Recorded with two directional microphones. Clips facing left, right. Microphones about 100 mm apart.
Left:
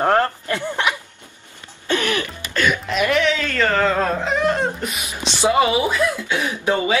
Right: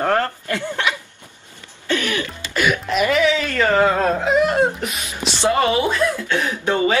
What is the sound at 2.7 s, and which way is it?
Speech, 5° right (ahead or behind).